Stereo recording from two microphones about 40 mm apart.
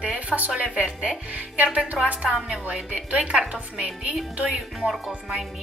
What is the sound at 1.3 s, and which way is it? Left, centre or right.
Speech, right.